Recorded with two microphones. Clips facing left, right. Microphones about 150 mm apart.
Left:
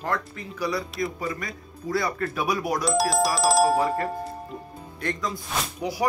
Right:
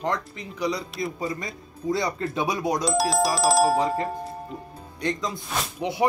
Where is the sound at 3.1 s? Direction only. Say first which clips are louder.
Right 1 dB; centre (ahead or behind).